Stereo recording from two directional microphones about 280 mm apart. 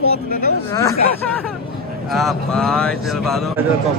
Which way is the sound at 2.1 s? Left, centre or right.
Centre.